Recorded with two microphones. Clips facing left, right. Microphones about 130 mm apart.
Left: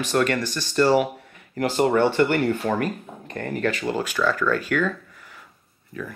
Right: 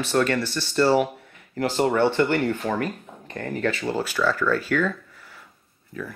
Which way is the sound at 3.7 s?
15° left (ahead or behind).